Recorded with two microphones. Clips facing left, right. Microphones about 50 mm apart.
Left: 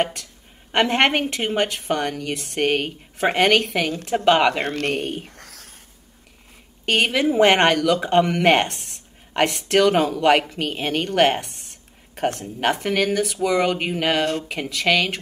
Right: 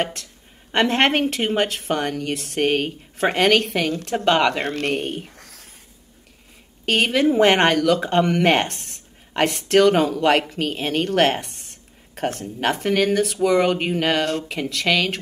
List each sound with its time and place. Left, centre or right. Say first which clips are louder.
0.7 s a woman's voice: even; centre
5.3 s a sound: left 2 dB; left
6.9 s speech: right 1 dB; centre